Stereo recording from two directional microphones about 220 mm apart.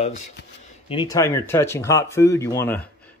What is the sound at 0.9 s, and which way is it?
Speech, 20° left (ahead or behind).